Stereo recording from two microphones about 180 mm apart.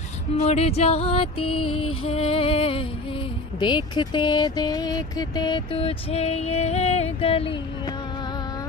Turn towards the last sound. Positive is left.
turn(degrees=30)  # may be behind; listen again after turning